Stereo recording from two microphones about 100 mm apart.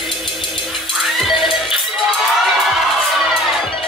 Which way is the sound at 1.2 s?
Centre (ahead or behind).